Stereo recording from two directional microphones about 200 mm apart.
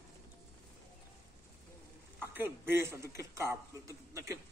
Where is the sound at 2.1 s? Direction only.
10° right (ahead or behind).